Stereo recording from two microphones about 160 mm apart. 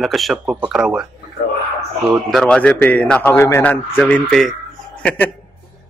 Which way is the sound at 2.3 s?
5° left (ahead or behind).